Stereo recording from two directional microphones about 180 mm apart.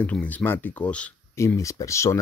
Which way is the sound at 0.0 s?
10° left (ahead or behind).